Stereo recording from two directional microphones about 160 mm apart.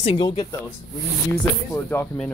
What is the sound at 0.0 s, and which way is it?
Speech, 30° left (ahead or behind).